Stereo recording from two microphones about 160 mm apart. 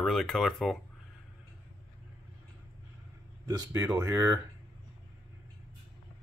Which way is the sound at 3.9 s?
20° right (ahead or behind).